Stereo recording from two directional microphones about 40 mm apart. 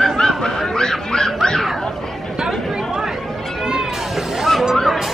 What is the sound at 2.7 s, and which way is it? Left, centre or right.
Chatter, centre.